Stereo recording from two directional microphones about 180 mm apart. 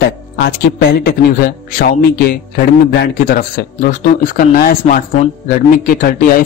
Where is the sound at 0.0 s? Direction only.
60° left (ahead or behind).